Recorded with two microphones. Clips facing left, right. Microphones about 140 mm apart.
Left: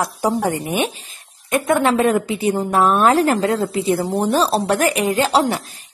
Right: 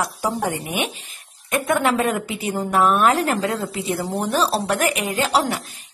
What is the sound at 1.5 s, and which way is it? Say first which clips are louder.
A woman's voice: left 3 dB; 30° left (ahead or behind).